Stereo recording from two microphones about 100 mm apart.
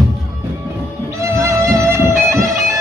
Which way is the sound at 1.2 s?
30° right (ahead or behind).